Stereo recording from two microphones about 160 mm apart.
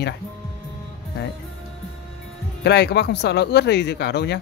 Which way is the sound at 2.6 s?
90° left.